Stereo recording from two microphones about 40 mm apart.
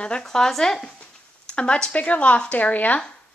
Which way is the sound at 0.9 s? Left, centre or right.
Left.